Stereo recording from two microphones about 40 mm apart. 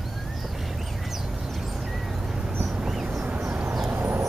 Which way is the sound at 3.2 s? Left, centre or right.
Right.